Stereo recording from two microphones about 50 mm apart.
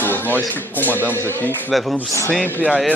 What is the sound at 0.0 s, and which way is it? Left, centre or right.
A man's voice, left.